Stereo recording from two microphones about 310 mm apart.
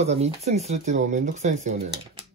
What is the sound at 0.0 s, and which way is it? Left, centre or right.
Speech, right.